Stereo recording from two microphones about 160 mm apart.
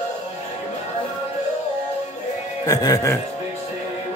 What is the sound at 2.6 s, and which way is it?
Speech, 20° left (ahead or behind).